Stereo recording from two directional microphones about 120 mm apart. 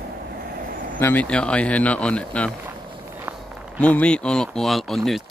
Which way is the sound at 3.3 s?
10° right (ahead or behind).